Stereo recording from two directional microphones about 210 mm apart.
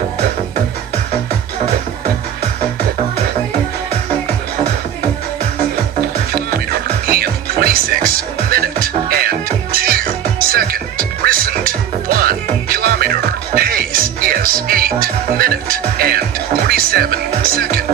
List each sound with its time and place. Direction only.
5.9 s music: 45° right (ahead or behind)